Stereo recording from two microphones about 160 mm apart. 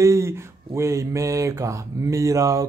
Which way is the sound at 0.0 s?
15° right (ahead or behind).